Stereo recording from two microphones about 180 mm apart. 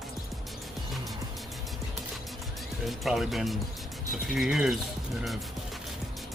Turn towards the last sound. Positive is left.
turn(degrees=0)  # may be behind; listen again after turning